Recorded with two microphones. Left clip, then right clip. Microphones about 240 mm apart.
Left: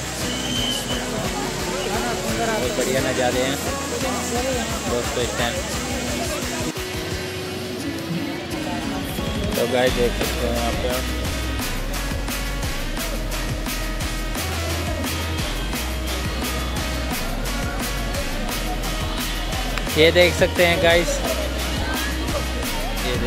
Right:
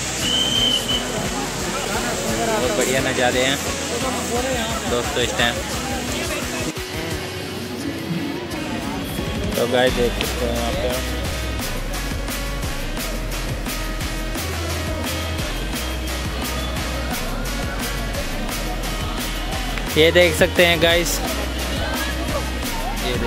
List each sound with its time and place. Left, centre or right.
2.9 s speech: centre
9.6 s speech: centre
20.0 s speech: centre
20.5 s speech: right